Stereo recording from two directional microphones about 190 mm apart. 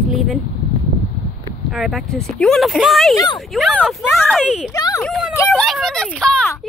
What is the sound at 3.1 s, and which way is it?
Speech, 20° left (ahead or behind).